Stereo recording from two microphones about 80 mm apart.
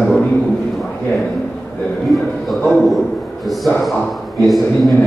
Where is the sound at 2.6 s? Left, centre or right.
Centre.